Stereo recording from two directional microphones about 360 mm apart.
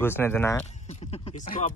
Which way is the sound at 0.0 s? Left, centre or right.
Centre.